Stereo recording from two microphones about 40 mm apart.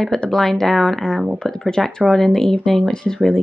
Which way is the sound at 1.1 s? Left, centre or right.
Right.